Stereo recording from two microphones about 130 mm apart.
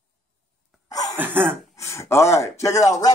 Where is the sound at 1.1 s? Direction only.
15° right (ahead or behind).